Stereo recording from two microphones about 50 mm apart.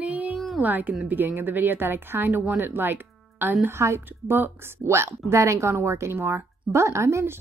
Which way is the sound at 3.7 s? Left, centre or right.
Right.